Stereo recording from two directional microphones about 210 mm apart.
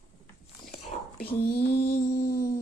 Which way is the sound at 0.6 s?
45° left (ahead or behind).